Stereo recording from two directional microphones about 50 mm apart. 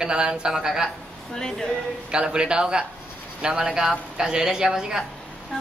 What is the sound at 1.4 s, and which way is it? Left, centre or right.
Speech, centre.